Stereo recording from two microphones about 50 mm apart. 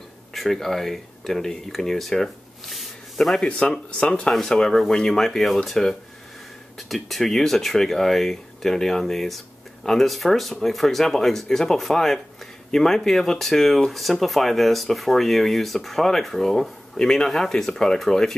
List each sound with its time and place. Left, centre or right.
0.3 s speech: centre
3.4 s speech: left